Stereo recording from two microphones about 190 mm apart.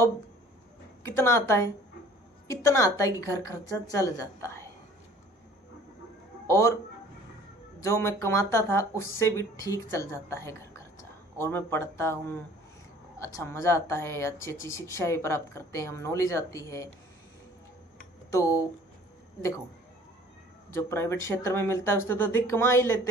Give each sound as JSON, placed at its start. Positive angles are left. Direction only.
{"t": 1.0, "sound": "a woman's voice", "side_deg": 15}
{"t": 6.4, "sound": "speech", "side_deg": 15}
{"t": 7.8, "sound": "a woman's voice", "side_deg": 15}
{"t": 18.3, "sound": "speech", "side_deg": 15}
{"t": 20.7, "sound": "a woman's voice", "side_deg": 15}